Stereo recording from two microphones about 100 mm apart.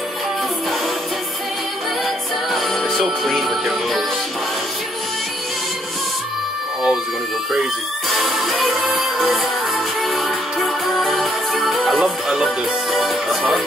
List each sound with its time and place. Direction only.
2.5 s music: centre (ahead or behind)
8.1 s music: centre (ahead or behind)